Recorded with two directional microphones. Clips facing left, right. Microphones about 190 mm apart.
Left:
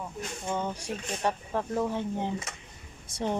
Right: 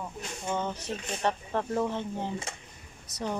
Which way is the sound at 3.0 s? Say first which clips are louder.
Left 3 dB; 30° left (ahead or behind).